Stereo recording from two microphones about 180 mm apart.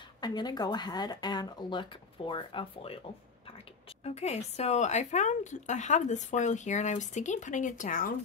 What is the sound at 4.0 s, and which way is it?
Speech, 35° left (ahead or behind).